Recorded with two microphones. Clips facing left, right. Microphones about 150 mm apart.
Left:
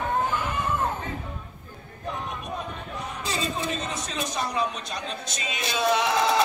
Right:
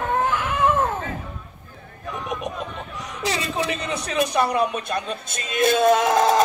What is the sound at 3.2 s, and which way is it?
A man's voice, 80° right.